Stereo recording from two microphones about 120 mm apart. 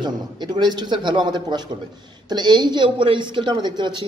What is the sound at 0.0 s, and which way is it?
Speech, 35° right (ahead or behind).